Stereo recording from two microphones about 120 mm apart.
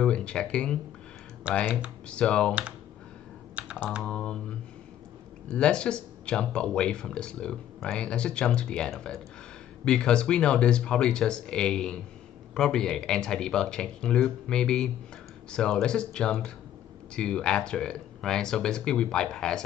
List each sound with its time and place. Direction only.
0.0 s speech: 10° left (ahead or behind)
1.5 s speech: 10° right (ahead or behind)
2.0 s speech: 10° left (ahead or behind)
3.5 s computer keyboard: 10° right (ahead or behind)
4.0 s speech: 10° left (ahead or behind)